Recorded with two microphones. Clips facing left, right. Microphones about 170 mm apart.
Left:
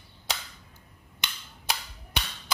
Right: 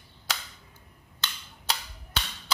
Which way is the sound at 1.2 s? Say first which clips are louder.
Even; 15° left (ahead or behind).